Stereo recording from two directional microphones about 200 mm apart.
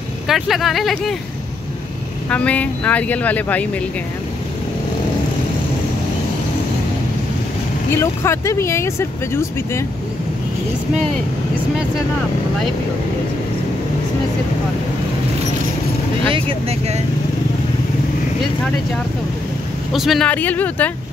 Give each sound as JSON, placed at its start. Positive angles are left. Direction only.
{"t": 0.3, "sound": "speech", "side_deg": 0}
{"t": 2.2, "sound": "speech", "side_deg": 5}
{"t": 7.9, "sound": "speech", "side_deg": 15}
{"t": 16.3, "sound": "speech", "side_deg": -30}
{"t": 19.9, "sound": "speech", "side_deg": 0}